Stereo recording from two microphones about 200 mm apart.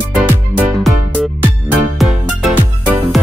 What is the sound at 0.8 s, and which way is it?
Music, centre (ahead or behind).